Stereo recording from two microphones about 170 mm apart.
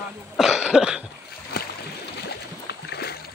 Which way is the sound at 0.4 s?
5° right (ahead or behind).